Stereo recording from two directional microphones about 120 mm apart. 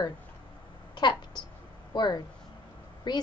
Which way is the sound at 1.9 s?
35° left (ahead or behind).